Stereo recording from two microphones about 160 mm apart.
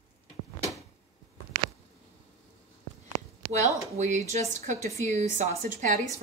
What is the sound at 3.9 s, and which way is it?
A woman's voice, 45° right (ahead or behind).